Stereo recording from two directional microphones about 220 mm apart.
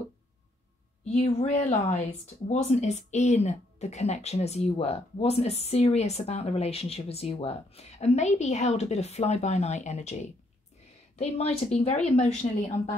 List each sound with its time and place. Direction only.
1.1 s speech: 25° left (ahead or behind)